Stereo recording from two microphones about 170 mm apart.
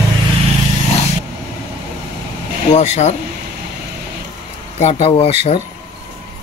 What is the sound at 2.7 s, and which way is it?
Speech, 40° left (ahead or behind).